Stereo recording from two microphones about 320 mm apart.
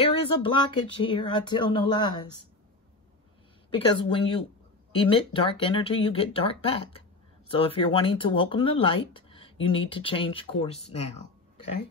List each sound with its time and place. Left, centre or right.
0.0 s speech: centre
3.7 s speech: centre